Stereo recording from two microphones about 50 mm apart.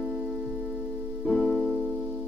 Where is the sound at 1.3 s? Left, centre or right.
Centre.